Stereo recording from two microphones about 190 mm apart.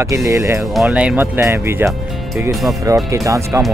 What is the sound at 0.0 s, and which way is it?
Speech, 15° right (ahead or behind).